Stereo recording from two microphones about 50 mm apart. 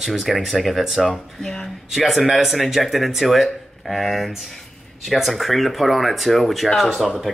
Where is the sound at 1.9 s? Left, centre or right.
Centre.